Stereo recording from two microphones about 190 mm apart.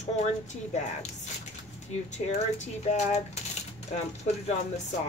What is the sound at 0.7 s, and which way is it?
Speech, 40° left (ahead or behind).